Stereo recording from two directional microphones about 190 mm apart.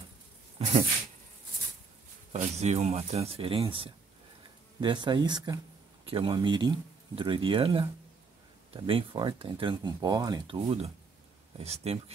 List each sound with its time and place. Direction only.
0.6 s speech: 35° right (ahead or behind)
2.3 s speech: 35° right (ahead or behind)
8.8 s speech: 25° right (ahead or behind)